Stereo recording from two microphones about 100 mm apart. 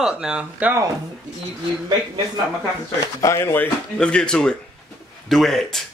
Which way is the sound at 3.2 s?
30° left (ahead or behind).